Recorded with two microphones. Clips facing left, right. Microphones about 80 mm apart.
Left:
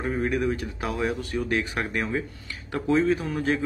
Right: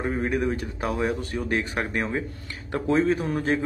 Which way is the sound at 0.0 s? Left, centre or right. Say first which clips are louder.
Even; centre.